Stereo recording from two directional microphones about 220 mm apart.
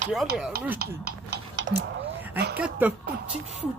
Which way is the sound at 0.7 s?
45° right (ahead or behind).